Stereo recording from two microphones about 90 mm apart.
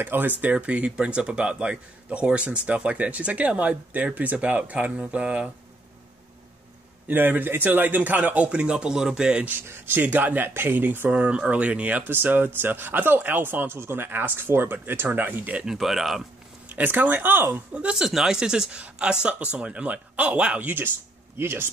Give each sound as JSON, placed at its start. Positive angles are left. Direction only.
{"t": 0.0, "sound": "a man's voice", "side_deg": -20}
{"t": 7.1, "sound": "speech", "side_deg": -20}
{"t": 16.6, "sound": "speech", "side_deg": -20}
{"t": 17.7, "sound": "a man's voice", "side_deg": -10}